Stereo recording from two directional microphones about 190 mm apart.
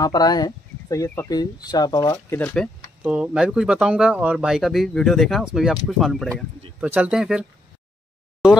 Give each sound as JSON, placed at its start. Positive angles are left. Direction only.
{"t": 0.0, "sound": "speech", "side_deg": 20}
{"t": 3.0, "sound": "speech", "side_deg": -5}